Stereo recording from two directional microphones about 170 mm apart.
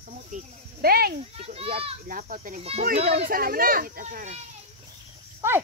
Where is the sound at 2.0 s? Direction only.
50° right (ahead or behind).